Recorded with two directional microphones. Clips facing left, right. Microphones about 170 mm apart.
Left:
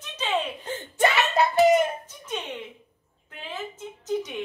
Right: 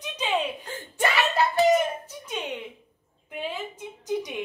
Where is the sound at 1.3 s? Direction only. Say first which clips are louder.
Left 1 dB; 20° left (ahead or behind).